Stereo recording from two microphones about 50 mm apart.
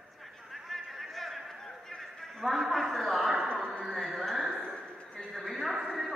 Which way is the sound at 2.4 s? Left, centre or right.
Centre.